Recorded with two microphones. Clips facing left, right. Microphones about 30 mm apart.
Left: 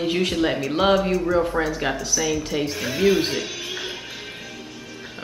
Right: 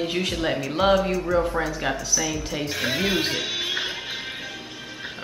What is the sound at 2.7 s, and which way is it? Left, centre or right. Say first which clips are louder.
Speech: right 2 dB; right.